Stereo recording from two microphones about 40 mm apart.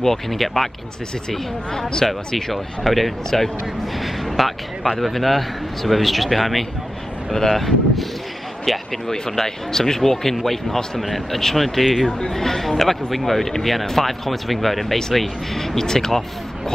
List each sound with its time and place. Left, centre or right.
0.0 s speech: centre
1.3 s speech: centre